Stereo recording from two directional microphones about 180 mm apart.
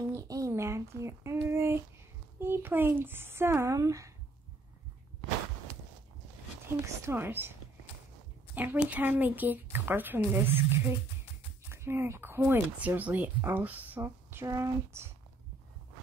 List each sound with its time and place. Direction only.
0.1 s a sound: 20° right (ahead or behind)
2.4 s speech: 10° right (ahead or behind)
7.1 s speech: 10° right (ahead or behind)
8.5 s speech: 10° right (ahead or behind)